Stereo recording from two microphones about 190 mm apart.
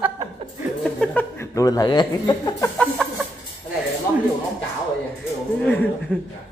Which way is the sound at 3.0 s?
5° left (ahead or behind).